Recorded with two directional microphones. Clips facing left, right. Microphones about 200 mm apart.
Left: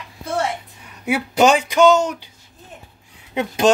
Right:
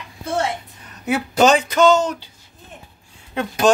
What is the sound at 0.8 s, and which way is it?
Speech, 10° left (ahead or behind).